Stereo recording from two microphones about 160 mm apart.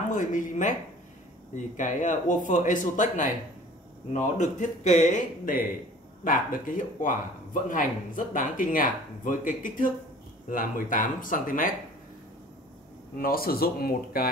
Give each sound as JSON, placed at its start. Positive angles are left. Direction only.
{"t": 0.1, "sound": "speech", "side_deg": 55}
{"t": 13.2, "sound": "speech", "side_deg": 65}